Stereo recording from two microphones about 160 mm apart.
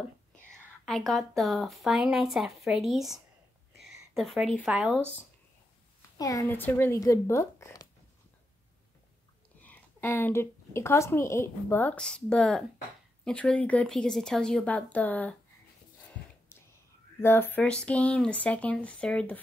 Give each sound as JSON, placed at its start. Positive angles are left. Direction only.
{"t": 0.3, "sound": "speech", "side_deg": 5}
{"t": 6.1, "sound": "speech", "side_deg": 20}
{"t": 9.6, "sound": "a woman's voice", "side_deg": 10}
{"t": 17.2, "sound": "speech", "side_deg": 15}